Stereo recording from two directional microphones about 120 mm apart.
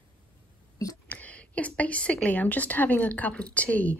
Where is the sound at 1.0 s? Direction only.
15° left (ahead or behind).